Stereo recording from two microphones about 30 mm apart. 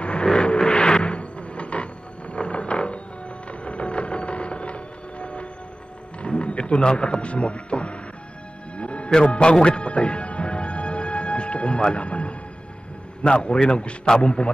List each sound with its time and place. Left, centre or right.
0.2 s music: left
1.0 s cupboard open or close: left
2.3 s a sound: left
3.6 s music: left
8.7 s music: left
9.4 s speech: left
9.8 s music: left
11.9 s a man's voice: left